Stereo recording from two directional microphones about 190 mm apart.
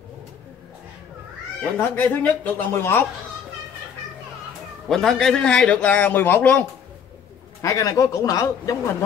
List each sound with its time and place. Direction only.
1.6 s speech: 10° left (ahead or behind)
4.8 s a man's voice: centre (ahead or behind)
7.6 s speech: 15° left (ahead or behind)